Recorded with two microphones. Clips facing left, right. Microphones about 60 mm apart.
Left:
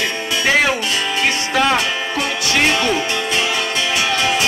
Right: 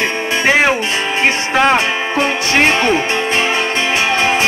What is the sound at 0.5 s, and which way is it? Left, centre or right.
Speech, right.